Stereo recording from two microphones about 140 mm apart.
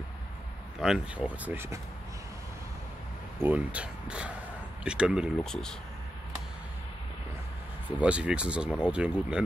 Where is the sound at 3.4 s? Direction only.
10° right (ahead or behind).